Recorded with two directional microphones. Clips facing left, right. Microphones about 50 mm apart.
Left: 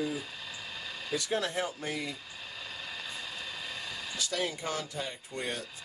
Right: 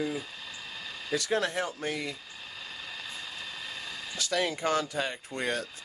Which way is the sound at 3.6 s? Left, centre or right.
Centre.